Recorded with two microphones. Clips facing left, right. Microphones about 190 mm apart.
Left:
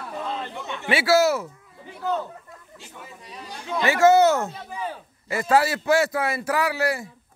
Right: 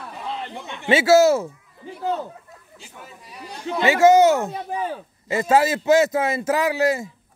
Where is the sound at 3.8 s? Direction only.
15° right (ahead or behind).